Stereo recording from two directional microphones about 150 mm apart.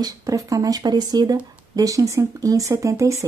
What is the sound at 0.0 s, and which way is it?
A woman's voice, 25° right (ahead or behind).